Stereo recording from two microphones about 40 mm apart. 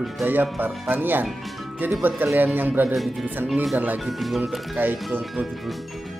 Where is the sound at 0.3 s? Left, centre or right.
Right.